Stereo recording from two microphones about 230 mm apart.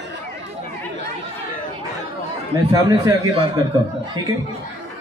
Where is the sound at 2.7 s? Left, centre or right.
Centre.